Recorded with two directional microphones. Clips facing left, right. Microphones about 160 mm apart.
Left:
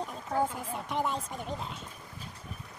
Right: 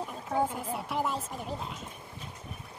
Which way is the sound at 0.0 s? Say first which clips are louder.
Even; 5° right (ahead or behind).